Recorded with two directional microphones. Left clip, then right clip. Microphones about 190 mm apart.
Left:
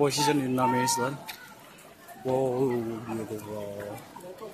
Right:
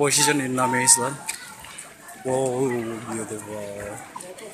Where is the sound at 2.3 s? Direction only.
Centre (ahead or behind).